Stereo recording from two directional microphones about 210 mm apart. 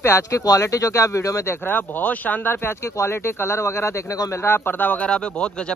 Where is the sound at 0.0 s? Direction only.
15° left (ahead or behind).